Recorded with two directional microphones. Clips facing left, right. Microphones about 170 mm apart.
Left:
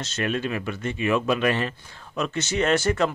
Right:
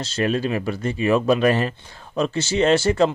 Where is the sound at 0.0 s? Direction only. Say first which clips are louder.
Right 5 dB; 35° right (ahead or behind).